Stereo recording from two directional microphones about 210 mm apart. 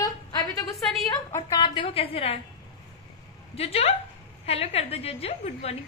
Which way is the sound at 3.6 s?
30° left (ahead or behind).